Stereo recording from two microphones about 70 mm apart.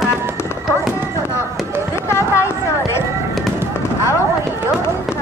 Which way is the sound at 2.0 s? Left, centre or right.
Left.